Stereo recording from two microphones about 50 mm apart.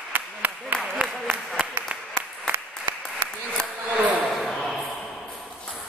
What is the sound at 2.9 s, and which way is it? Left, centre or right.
Applause, right.